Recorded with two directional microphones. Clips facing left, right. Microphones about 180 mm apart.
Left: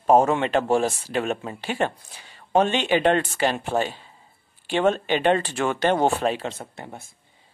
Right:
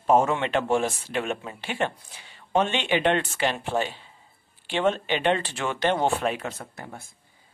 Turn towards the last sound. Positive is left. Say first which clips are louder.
# left 2 dB
turn(degrees=25)  # may be behind; listen again after turning